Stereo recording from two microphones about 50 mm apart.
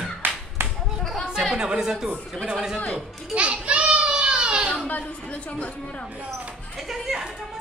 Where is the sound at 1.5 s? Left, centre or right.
Centre.